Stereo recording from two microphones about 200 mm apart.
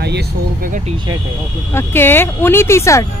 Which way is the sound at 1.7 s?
10° left (ahead or behind).